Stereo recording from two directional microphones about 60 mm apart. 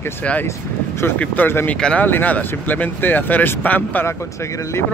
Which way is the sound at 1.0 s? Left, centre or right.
Left.